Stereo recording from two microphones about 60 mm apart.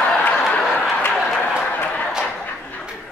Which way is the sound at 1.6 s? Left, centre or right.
Left.